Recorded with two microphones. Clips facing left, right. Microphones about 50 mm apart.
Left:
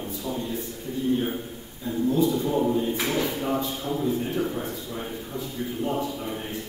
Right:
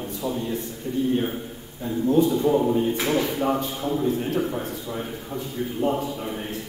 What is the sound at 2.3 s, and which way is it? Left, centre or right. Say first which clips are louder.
Speech: right 4 dB; centre.